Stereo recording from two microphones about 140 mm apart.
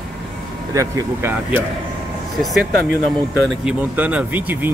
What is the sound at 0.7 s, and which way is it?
Speech, 25° right (ahead or behind).